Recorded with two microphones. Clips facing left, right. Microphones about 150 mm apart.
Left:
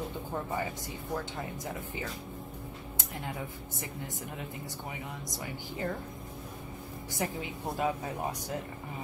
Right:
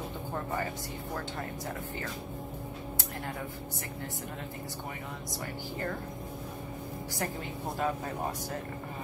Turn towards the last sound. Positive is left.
turn(degrees=15)  # may be behind; listen again after turning